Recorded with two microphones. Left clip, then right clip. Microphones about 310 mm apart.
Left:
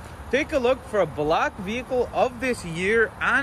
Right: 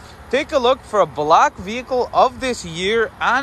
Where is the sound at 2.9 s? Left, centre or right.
Centre.